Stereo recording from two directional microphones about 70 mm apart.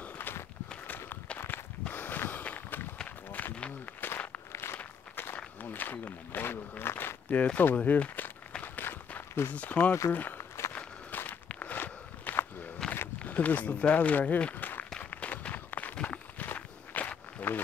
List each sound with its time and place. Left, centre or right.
0.0 s walk: left
6.8 s a sound: left
7.4 s walk: left
9.5 s speech: left
10.7 s walk: left
12.8 s a sound: centre
13.2 s speech: left
15.0 s walk: left